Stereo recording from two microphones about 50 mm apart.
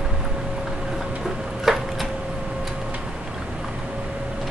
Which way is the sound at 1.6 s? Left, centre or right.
Centre.